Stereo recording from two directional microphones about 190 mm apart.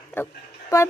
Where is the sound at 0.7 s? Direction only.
20° left (ahead or behind).